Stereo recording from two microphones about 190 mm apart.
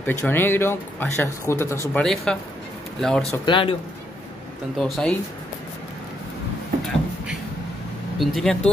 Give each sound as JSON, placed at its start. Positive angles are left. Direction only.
{"t": 0.0, "sound": "speech", "side_deg": 10}
{"t": 2.0, "sound": "speech", "side_deg": 5}
{"t": 3.4, "sound": "speech", "side_deg": 25}
{"t": 4.7, "sound": "speech", "side_deg": 0}
{"t": 8.2, "sound": "speech", "side_deg": 0}